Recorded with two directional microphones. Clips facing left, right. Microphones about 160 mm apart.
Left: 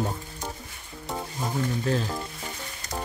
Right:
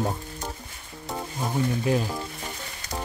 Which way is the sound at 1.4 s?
10° right (ahead or behind).